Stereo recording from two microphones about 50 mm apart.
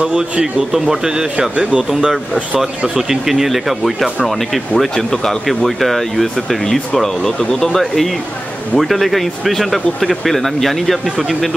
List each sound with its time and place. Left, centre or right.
0.1 s speech: centre
4.7 s speech: centre